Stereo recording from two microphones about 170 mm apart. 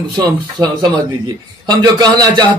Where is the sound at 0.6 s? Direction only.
25° right (ahead or behind).